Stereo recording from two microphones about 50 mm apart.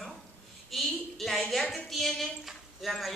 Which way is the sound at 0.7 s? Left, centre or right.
Centre.